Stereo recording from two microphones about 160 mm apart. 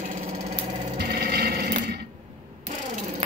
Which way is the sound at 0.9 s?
90° right.